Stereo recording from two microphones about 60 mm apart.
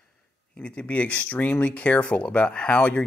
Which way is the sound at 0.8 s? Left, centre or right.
Left.